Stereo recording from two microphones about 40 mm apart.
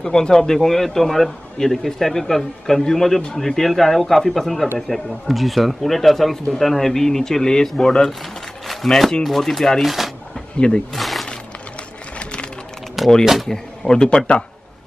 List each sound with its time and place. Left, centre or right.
0.0 s speech: centre
8.8 s speech: centre
10.9 s a sound: centre
12.2 s a sound: left
13.2 s speech: centre
13.5 s speech: centre